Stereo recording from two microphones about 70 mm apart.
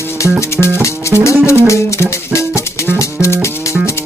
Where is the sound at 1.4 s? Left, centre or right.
Left.